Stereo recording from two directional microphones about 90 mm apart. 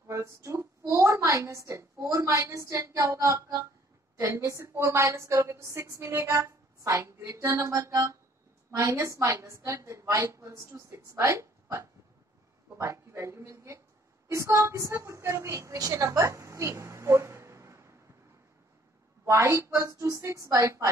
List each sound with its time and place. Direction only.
0.0 s a woman's voice: 30° right (ahead or behind)
19.2 s a woman's voice: 35° right (ahead or behind)